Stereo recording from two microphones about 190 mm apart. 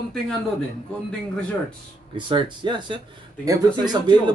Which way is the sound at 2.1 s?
25° right (ahead or behind).